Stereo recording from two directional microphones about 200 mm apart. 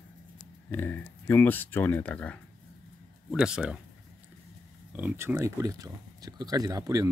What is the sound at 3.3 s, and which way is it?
Speech, 5° right (ahead or behind).